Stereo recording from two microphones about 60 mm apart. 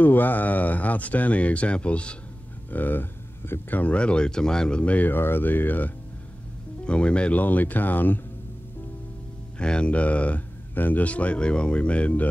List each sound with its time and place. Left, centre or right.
0.0 s speech: left
2.7 s speech: left
3.8 s speech: centre
5.1 s speech: left
6.8 s speech: centre
9.6 s speech: centre